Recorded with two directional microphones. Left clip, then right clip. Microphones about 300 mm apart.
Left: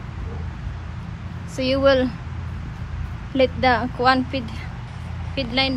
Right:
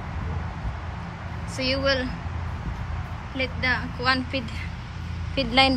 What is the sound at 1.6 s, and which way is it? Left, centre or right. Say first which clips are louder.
Speech: left 7 dB; centre.